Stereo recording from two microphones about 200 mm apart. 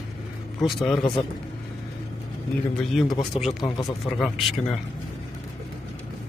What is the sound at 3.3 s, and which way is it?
Speech, 30° left (ahead or behind).